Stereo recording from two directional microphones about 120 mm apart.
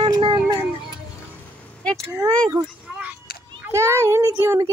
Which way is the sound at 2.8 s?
10° right (ahead or behind).